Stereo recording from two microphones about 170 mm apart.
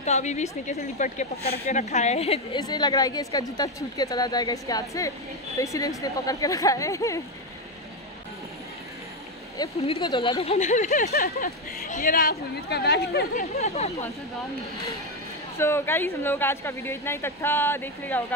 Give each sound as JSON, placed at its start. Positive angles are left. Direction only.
{"t": 0.0, "sound": "a woman's voice", "side_deg": 40}
{"t": 2.6, "sound": "a woman's voice", "side_deg": 25}
{"t": 9.8, "sound": "a woman's voice", "side_deg": 35}
{"t": 10.9, "sound": "speech", "side_deg": 60}
{"t": 13.6, "sound": "a woman's voice", "side_deg": 40}
{"t": 15.5, "sound": "a woman's voice", "side_deg": 15}